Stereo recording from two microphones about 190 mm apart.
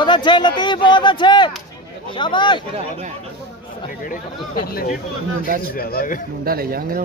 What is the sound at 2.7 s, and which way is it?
Speech, 35° right (ahead or behind).